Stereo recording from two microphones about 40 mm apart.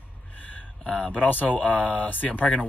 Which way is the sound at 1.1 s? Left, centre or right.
Left.